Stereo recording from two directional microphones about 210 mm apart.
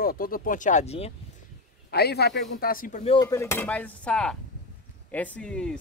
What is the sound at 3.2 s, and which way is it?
A woman's voice, 15° left (ahead or behind).